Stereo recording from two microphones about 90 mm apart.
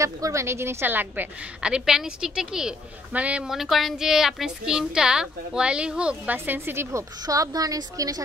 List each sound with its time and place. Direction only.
0.0 s a woman's voice: 35° right (ahead or behind)
1.6 s a woman's voice: 5° right (ahead or behind); by 8.2 s 40° right (ahead or behind)